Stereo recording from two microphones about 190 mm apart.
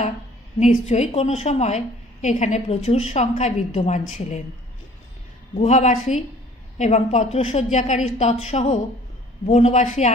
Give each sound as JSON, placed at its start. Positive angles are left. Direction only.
{"t": 0.6, "sound": "a woman's voice", "side_deg": 35}
{"t": 5.5, "sound": "a woman's voice", "side_deg": 35}